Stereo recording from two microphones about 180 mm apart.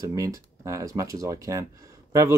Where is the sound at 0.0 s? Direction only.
20° right (ahead or behind).